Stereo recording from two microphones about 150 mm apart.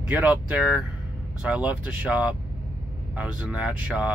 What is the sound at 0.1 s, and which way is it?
Speech, 5° right (ahead or behind).